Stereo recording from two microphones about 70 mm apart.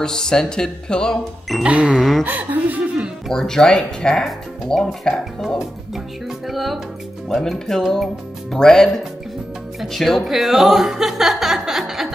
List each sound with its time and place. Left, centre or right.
0.0 s speech: centre
1.6 s a sound: centre
2.0 s speech: centre
2.2 s speech: right
3.3 s speech: centre
6.4 s speech: centre